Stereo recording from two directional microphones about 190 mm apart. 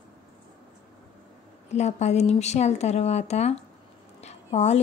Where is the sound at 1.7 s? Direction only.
35° left (ahead or behind).